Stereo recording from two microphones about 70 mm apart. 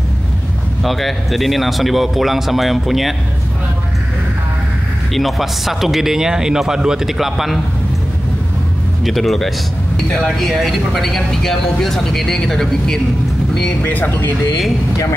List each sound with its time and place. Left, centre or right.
0.8 s speech: centre
5.1 s speech: centre
9.0 s speech: centre
13.8 s speech: left